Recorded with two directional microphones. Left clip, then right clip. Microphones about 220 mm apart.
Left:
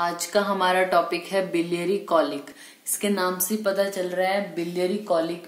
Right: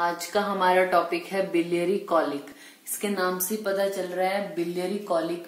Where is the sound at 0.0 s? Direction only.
40° left (ahead or behind).